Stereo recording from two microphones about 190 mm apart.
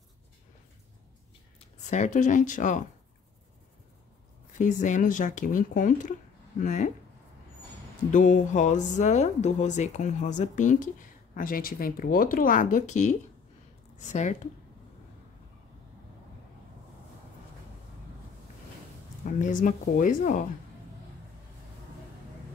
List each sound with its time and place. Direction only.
1.6 s speech: 40° left (ahead or behind)
4.6 s speech: 40° left (ahead or behind)
8.1 s speech: 40° left (ahead or behind)
19.2 s speech: 40° left (ahead or behind)